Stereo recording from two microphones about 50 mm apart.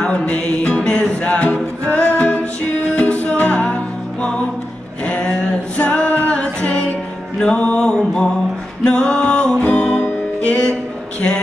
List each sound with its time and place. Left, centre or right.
0.0 s music: left